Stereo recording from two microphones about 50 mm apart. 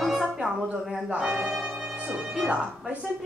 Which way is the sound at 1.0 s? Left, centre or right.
Right.